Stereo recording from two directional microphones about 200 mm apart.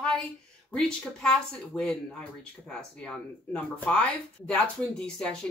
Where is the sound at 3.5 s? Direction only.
5° left (ahead or behind).